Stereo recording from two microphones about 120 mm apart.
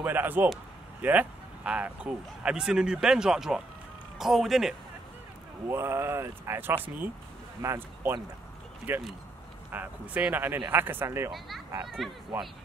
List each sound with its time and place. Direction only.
0.0 s a man's voice: 15° right (ahead or behind)
5.7 s speech: 20° right (ahead or behind)
11.3 s speech: centre (ahead or behind)